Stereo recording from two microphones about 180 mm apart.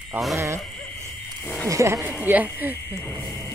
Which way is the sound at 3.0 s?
15° left (ahead or behind).